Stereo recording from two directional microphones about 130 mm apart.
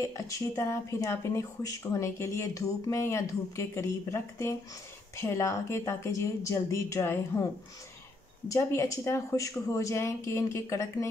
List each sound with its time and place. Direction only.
0.0 s speech: 20° left (ahead or behind)
8.5 s speech: 25° left (ahead or behind)